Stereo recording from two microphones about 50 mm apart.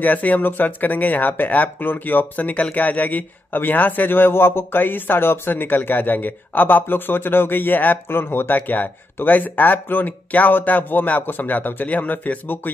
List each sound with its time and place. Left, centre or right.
0.0 s speech: left